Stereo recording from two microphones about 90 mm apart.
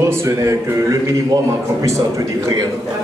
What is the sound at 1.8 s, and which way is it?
Speech, 35° right (ahead or behind).